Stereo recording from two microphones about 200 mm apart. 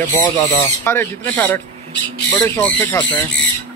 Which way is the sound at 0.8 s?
10° left (ahead or behind).